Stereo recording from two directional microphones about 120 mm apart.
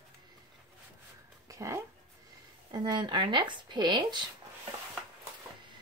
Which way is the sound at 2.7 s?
35° right (ahead or behind).